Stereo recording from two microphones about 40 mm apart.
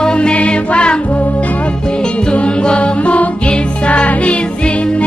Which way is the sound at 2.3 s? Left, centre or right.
Left.